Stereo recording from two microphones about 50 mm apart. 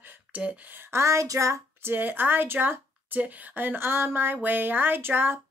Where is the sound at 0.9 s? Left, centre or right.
Right.